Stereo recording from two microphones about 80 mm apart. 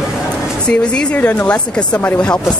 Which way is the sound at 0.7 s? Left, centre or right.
Centre.